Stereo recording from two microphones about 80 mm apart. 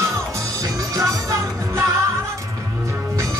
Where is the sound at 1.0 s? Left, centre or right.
Right.